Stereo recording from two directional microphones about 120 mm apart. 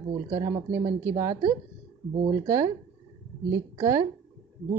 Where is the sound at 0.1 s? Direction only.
30° right (ahead or behind).